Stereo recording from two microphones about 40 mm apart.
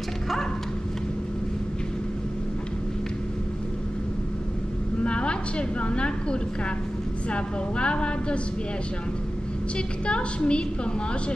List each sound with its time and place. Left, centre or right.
5.0 s a woman's voice: left
9.8 s a woman's voice: left